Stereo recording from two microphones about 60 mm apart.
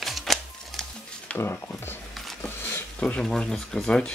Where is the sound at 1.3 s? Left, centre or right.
Left.